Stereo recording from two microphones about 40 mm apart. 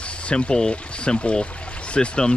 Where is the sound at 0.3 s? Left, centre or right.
Left.